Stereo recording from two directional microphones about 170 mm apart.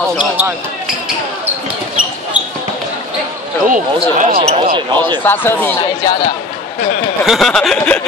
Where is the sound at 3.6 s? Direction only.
50° right (ahead or behind).